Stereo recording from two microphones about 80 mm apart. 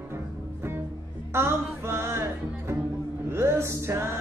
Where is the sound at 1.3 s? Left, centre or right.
Right.